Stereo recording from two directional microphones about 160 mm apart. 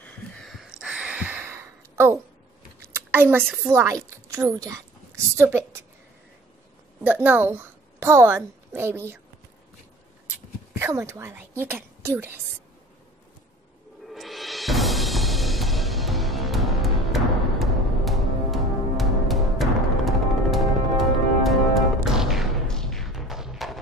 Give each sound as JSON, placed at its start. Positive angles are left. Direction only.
{"t": 0.0, "sound": "a sound", "side_deg": 0}
{"t": 3.6, "sound": "a woman's voice", "side_deg": -15}
{"t": 7.0, "sound": "a woman's voice", "side_deg": -10}
{"t": 10.7, "sound": "a woman's voice", "side_deg": -15}
{"t": 14.0, "sound": "music", "side_deg": 0}